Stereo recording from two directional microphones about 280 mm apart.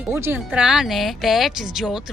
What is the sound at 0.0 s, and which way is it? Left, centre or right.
Speech, centre.